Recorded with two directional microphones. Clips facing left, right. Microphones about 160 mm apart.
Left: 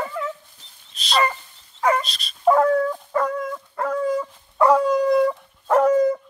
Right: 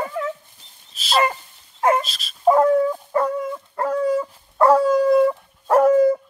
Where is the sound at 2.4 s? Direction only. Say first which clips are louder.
Right 2 dB; 15° right (ahead or behind).